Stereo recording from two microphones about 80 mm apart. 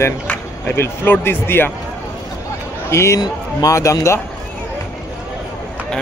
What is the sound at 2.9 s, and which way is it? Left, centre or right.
A man's voice, left.